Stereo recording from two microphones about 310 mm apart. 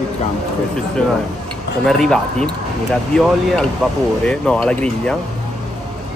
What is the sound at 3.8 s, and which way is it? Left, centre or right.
Speech, centre.